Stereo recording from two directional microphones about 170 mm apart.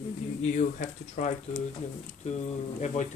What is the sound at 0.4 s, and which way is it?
Speech, 50° left (ahead or behind).